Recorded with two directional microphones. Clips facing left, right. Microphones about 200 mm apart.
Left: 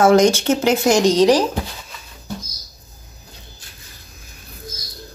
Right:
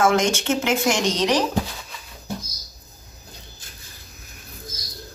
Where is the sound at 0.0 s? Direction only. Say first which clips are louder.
Left 7 dB; 35° left (ahead or behind).